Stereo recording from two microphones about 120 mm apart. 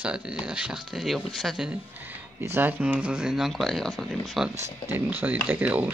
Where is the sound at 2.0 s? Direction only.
15° right (ahead or behind).